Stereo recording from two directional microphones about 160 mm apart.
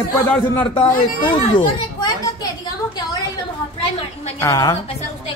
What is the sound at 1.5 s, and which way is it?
Speech, 30° left (ahead or behind).